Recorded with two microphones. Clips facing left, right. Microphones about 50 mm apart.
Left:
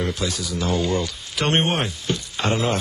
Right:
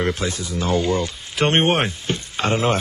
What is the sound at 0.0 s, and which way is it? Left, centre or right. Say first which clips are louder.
Speech: right 3 dB; right.